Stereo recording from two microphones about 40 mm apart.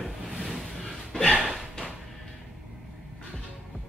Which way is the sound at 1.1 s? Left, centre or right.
Centre.